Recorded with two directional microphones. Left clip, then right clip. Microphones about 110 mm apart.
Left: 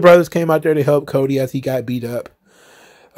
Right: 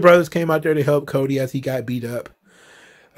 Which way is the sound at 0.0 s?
50° left (ahead or behind).